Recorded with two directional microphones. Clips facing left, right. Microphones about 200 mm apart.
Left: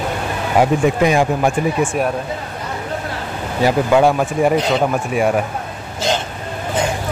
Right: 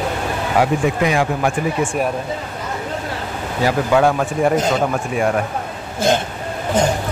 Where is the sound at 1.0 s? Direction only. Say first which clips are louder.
Left 3 dB; 25° left (ahead or behind).